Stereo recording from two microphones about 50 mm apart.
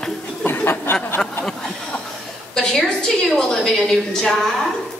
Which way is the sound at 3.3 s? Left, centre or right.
Centre.